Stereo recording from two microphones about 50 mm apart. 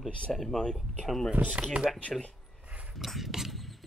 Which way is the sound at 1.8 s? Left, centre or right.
Right.